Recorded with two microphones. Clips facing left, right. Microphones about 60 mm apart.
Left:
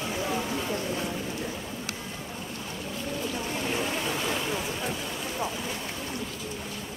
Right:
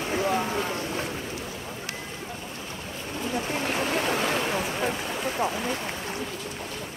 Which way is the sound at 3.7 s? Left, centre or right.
Right.